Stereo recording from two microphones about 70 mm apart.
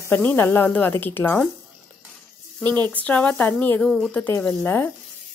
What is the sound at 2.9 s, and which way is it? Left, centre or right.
Speech, centre.